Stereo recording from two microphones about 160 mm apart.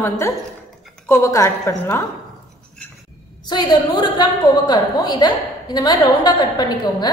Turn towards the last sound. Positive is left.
turn(degrees=25)  # may be behind; listen again after turning